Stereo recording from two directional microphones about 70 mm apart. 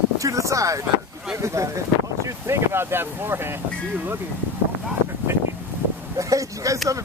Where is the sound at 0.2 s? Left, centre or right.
Right.